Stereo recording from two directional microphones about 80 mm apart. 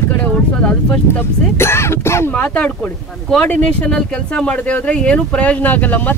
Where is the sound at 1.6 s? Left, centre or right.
Left.